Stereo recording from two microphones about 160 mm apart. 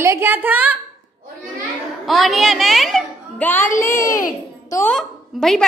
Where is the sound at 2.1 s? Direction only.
Centre (ahead or behind); by 4.8 s 20° left (ahead or behind).